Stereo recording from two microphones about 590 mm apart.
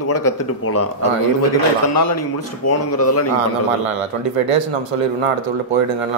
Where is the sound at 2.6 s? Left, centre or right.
Left.